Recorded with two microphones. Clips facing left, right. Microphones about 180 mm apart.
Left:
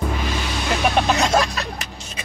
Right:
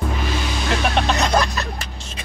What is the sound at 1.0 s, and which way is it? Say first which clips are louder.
Music: left 1 dB; centre (ahead or behind).